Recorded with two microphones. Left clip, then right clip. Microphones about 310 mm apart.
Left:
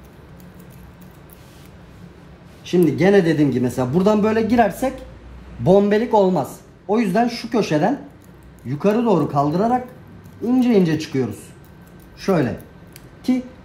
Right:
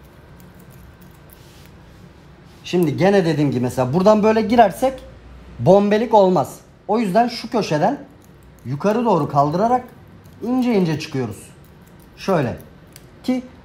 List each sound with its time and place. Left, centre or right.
2.7 s a man's voice: centre